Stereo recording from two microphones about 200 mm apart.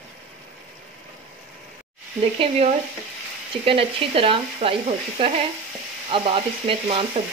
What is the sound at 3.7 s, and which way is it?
Speech, 25° right (ahead or behind).